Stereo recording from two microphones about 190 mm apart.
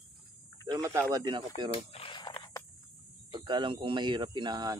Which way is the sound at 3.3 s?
25° right (ahead or behind).